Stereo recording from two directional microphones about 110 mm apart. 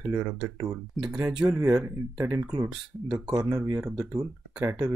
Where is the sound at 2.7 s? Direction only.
5° right (ahead or behind).